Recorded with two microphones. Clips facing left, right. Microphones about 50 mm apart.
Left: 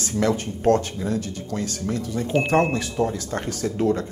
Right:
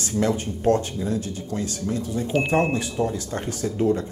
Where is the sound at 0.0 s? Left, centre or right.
Left.